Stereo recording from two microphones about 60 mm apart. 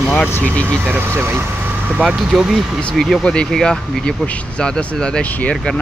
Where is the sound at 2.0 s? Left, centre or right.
Centre.